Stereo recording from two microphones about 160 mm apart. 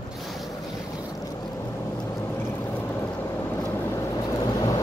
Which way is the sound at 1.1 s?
25° left (ahead or behind).